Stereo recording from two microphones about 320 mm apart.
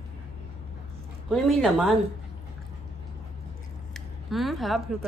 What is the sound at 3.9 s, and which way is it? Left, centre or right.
Speech, centre.